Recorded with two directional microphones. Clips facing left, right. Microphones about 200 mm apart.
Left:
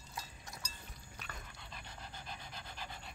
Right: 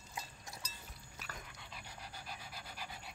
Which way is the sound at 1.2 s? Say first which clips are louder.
Right 1 dB; 5° right (ahead or behind).